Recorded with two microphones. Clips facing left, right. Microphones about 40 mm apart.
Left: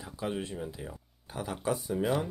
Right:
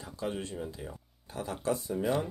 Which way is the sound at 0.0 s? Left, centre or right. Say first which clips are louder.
Left 1 dB; left.